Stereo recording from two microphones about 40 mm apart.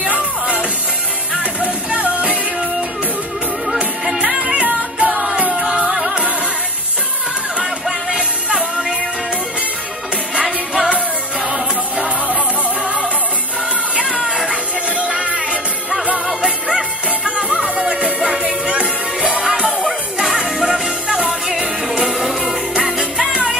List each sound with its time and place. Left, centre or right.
0.0 s music: right
3.7 s music: centre
4.4 s music: right
5.5 s music: centre
8.1 s music: right
10.4 s music: centre
12.0 s music: right
14.5 s music: right
17.2 s music: right
20.2 s music: centre
20.4 s music: centre
20.7 s music: centre
21.8 s music: centre